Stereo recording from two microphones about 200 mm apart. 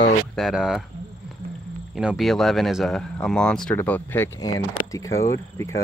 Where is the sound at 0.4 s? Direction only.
Centre (ahead or behind).